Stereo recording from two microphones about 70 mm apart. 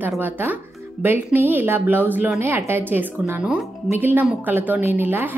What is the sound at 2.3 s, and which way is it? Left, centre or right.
A woman's voice, right.